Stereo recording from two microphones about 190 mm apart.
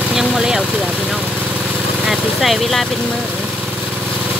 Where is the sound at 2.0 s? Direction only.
Centre (ahead or behind).